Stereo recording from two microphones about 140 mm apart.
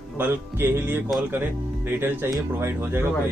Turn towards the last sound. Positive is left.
turn(degrees=-15)  # may be behind; listen again after turning